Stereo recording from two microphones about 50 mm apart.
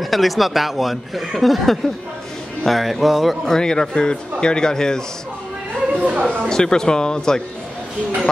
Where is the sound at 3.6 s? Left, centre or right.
Centre.